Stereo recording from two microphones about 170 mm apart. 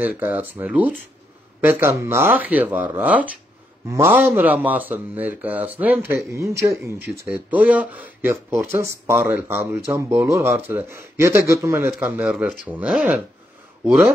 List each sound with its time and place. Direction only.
0.0 s speech: 10° right (ahead or behind)